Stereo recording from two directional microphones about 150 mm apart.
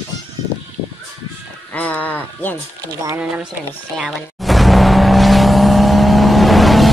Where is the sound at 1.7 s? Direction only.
10° left (ahead or behind).